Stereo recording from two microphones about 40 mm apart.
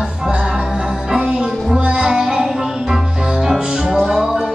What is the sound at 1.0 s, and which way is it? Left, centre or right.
Music, centre.